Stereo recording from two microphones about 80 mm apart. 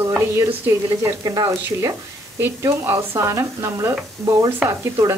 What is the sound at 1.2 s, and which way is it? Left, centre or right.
Speech, right.